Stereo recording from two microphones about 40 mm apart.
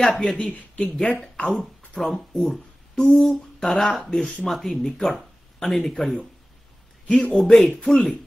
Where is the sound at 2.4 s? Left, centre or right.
Centre.